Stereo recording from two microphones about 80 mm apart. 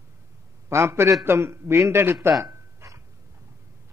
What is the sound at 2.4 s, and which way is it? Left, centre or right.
Dog, right.